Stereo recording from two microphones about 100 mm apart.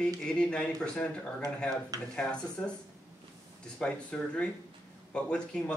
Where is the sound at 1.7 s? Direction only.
35° right (ahead or behind).